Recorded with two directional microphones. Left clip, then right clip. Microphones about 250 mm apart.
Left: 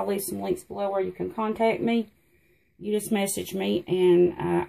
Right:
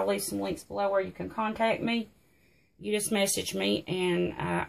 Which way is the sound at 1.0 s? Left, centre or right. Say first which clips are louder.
Left 2 dB; right.